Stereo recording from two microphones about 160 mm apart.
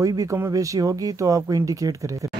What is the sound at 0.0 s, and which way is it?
Speech, 25° right (ahead or behind).